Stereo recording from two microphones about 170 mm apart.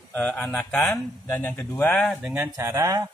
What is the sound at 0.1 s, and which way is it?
Speech, 10° left (ahead or behind).